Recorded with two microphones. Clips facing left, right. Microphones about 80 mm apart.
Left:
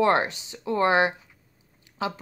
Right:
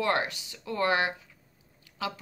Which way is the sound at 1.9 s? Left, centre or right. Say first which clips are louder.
Left 5 dB; left.